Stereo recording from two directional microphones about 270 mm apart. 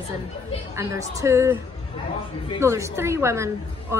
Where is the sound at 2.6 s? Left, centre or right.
Centre.